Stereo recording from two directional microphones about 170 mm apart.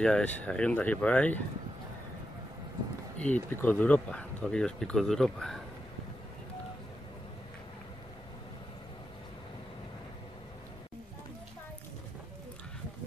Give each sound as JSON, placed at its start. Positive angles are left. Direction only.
{"t": 0.0, "sound": "speech", "side_deg": 5}
{"t": 3.2, "sound": "speech", "side_deg": 10}